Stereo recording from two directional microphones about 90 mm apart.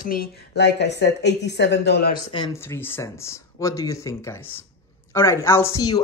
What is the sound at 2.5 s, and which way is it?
A woman's voice, 30° left (ahead or behind).